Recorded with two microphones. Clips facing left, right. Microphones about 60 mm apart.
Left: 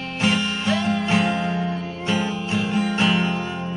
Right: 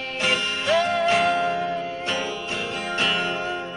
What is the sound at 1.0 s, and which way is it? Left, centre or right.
Music, centre.